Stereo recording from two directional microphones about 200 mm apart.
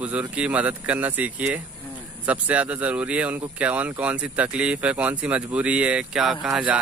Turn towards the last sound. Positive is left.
turn(degrees=-5)  # may be behind; listen again after turning